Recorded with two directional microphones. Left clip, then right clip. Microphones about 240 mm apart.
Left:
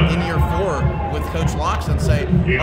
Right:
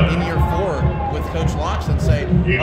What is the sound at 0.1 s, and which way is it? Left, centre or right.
Music, centre.